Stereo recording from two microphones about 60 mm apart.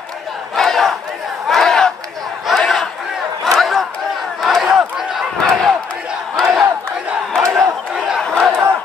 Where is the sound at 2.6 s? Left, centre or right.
Centre.